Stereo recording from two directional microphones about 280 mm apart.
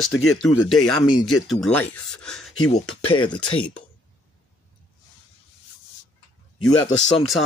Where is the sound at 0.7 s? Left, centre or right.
Centre.